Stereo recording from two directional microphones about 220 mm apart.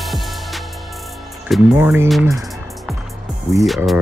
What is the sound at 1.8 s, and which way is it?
Speech, 10° right (ahead or behind).